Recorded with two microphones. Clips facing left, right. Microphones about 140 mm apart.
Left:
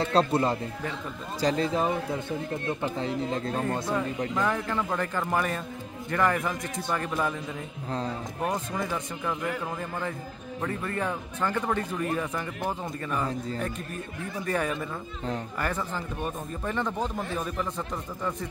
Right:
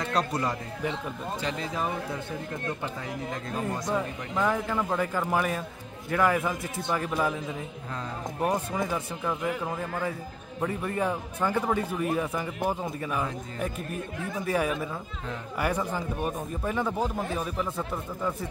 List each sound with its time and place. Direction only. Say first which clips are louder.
0.0 s a man's voice: left 4 dB; 30° left (ahead or behind)
3.0 s a man's voice: left 5 dB; 25° left (ahead or behind)
4.4 s a man's voice: right 3 dB; 10° right (ahead or behind)
8.4 s a man's voice: right 3 dB; 10° right (ahead or behind)
14.4 s speech: right 1 dB; 10° right (ahead or behind)